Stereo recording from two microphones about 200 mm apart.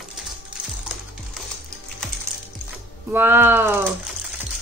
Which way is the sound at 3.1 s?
10° right (ahead or behind).